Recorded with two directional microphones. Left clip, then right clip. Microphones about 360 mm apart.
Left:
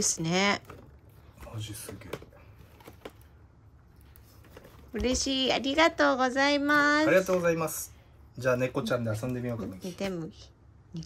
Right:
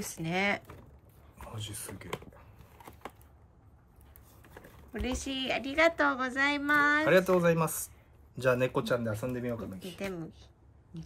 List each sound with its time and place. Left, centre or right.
0.0 s a woman's voice: centre
4.9 s a woman's voice: centre
7.2 s speech: right
9.9 s a woman's voice: centre